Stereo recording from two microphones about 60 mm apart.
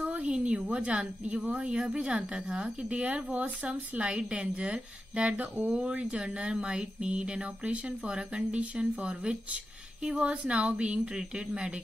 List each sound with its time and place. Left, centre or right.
0.1 s a woman's voice: centre